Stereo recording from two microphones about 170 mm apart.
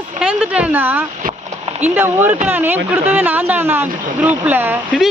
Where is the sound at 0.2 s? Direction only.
5° right (ahead or behind).